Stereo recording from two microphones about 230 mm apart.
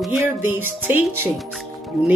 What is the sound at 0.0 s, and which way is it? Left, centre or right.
A woman's voice, centre.